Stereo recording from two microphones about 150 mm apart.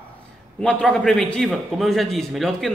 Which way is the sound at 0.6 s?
5° left (ahead or behind).